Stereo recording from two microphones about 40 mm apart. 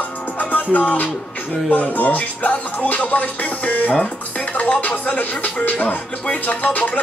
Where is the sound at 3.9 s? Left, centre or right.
Left.